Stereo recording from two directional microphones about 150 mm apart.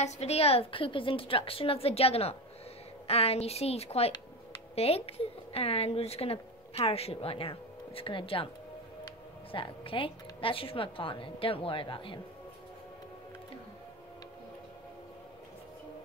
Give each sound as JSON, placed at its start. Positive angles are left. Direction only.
{"t": 0.0, "sound": "a woman's voice", "side_deg": 45}
{"t": 9.5, "sound": "a woman's voice", "side_deg": 35}